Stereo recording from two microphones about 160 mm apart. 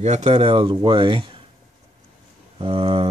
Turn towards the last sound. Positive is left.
turn(degrees=-35)  # may be behind; listen again after turning